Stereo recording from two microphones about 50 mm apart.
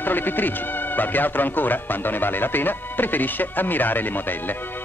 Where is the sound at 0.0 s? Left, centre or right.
Left.